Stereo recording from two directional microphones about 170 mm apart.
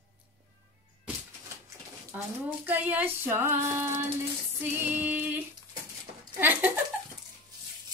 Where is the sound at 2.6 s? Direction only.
10° right (ahead or behind).